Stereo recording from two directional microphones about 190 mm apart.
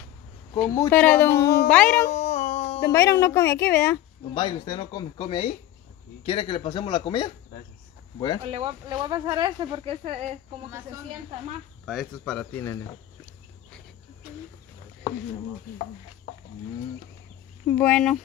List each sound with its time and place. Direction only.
0.7 s a woman's voice: 15° left (ahead or behind)
1.3 s speech: 55° left (ahead or behind)
1.7 s a woman's voice: 5° left (ahead or behind)
2.1 s a sound: 35° left (ahead or behind)
2.8 s a woman's voice: 15° left (ahead or behind)
4.3 s speech: 25° left (ahead or behind)
8.4 s speech: 30° right (ahead or behind)
11.8 s speech: centre (ahead or behind)
17.6 s a woman's voice: 10° left (ahead or behind)